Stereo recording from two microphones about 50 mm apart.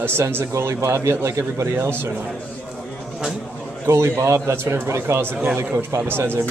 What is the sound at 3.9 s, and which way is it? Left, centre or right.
A man's voice, right.